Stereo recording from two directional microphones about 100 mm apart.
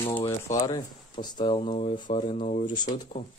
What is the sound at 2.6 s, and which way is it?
Speech, 50° left (ahead or behind).